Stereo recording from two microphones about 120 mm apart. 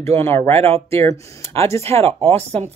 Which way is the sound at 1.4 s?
25° left (ahead or behind).